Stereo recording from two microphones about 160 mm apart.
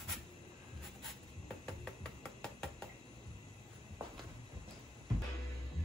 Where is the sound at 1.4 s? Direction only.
5° left (ahead or behind).